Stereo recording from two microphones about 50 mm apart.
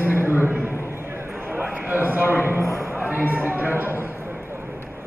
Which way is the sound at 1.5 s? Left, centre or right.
Right.